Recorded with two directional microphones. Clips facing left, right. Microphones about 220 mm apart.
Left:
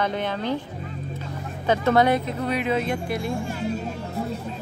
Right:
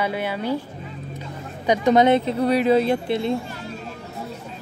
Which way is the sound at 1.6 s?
15° right (ahead or behind).